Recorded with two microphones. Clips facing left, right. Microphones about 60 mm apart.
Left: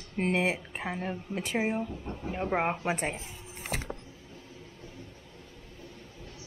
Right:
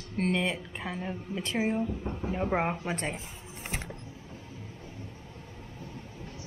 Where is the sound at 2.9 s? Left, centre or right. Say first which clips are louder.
Left 2 dB; centre.